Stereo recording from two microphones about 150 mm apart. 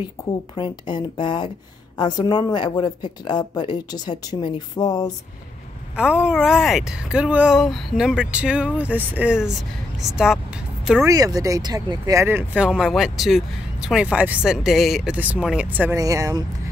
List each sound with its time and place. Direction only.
0.6 s speech: 30° left (ahead or behind)
5.9 s speech: 5° right (ahead or behind)
11.1 s speech: 25° right (ahead or behind)
16.0 s speech: 20° right (ahead or behind)